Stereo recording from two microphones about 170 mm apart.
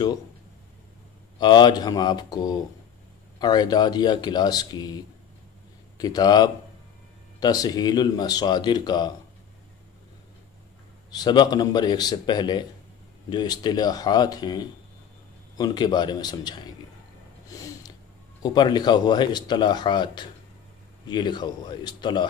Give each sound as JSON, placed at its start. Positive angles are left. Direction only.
{"t": 1.4, "sound": "speech", "side_deg": 25}
{"t": 11.1, "sound": "speech", "side_deg": 25}
{"t": 17.5, "sound": "a sound", "side_deg": 20}
{"t": 18.4, "sound": "speech", "side_deg": 25}